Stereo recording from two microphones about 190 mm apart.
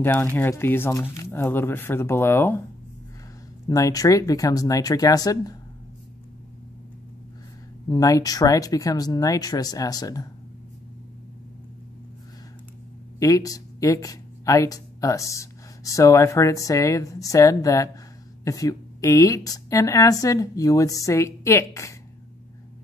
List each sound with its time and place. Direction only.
0.0 s speech: 10° left (ahead or behind)
3.6 s speech: 20° left (ahead or behind)
7.9 s speech: 20° left (ahead or behind)
13.2 s speech: 20° left (ahead or behind)